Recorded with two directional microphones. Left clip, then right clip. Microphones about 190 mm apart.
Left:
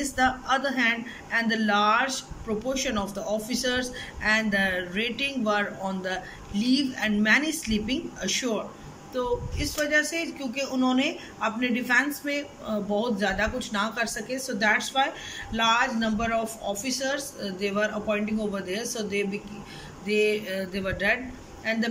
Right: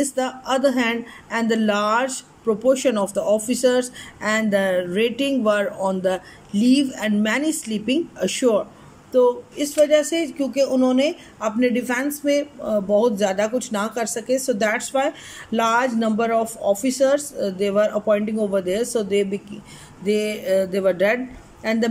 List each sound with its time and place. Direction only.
0.0 s speech: 30° right (ahead or behind)